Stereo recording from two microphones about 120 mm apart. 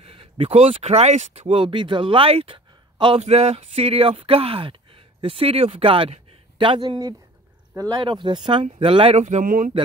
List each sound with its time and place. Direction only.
0.0 s speech: 50° right (ahead or behind)
3.2 s speech: 65° right (ahead or behind); by 9.7 s 80° right